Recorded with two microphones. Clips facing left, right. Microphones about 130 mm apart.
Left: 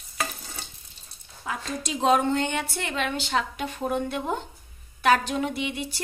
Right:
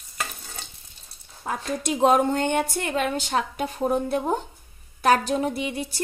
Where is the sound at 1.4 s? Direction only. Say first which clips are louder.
Right 4 dB; 50° right (ahead or behind).